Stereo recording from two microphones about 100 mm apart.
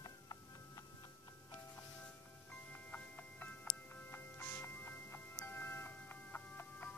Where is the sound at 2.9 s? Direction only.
15° left (ahead or behind).